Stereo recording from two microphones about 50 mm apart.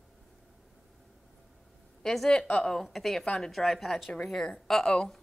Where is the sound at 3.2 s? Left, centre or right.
Left.